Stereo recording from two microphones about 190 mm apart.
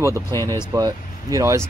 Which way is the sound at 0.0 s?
15° right (ahead or behind).